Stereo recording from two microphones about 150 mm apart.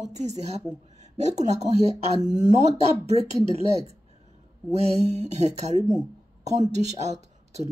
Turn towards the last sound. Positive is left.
turn(degrees=-50)  # may be behind; listen again after turning